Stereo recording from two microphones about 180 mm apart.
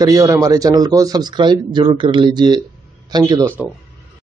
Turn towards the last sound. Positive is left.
turn(degrees=-20)  # may be behind; listen again after turning